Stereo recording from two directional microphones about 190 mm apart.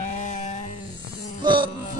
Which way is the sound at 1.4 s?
25° right (ahead or behind).